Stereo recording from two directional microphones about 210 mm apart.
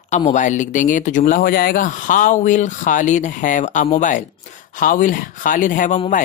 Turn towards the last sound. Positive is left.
turn(degrees=40)  # may be behind; listen again after turning